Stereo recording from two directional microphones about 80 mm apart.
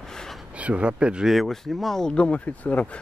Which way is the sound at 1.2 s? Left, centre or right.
Centre.